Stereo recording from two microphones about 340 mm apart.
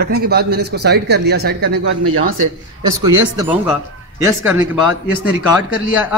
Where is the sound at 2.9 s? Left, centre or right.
Centre.